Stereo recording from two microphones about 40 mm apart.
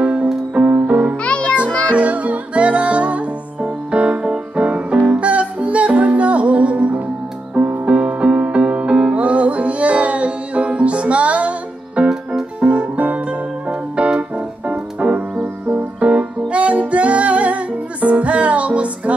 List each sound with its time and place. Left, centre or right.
0.0 s music: right
1.2 s music: left
2.0 s music: right